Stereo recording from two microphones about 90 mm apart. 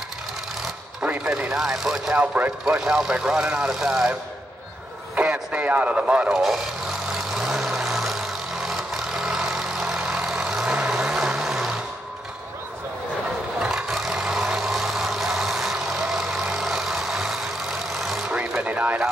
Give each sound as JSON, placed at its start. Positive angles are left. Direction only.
{"t": 1.0, "sound": "speech", "side_deg": -10}
{"t": 2.1, "sound": "speech", "side_deg": -15}
{"t": 5.1, "sound": "speech", "side_deg": -15}
{"t": 7.3, "sound": "vehicle", "side_deg": -5}
{"t": 13.6, "sound": "vehicle", "side_deg": -5}
{"t": 18.6, "sound": "vehicle", "side_deg": -15}